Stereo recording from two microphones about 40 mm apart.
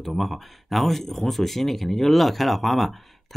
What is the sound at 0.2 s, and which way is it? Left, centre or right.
Speech, centre.